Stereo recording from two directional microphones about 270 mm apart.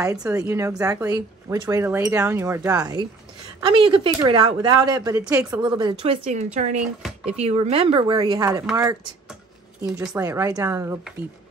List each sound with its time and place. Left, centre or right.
0.0 s speech: centre
9.8 s speech: centre